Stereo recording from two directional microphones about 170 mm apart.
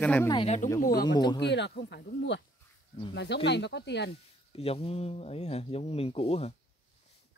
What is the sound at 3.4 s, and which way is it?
Speech, 90° left.